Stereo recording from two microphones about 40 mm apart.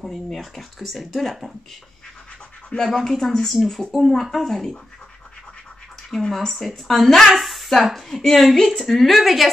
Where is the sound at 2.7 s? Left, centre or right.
Left.